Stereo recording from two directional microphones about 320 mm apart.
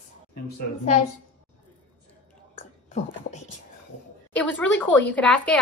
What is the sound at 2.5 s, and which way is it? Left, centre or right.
Whispering, left.